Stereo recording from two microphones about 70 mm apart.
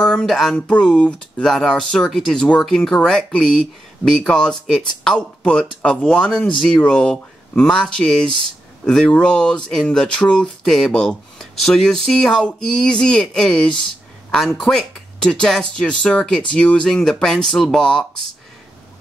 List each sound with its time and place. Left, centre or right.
0.0 s speech: centre
0.7 s speech: centre
1.4 s speech: centre
6.3 s speech: centre
6.8 s speech: centre